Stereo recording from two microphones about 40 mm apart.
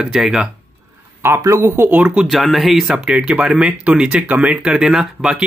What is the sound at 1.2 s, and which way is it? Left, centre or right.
Speech, right.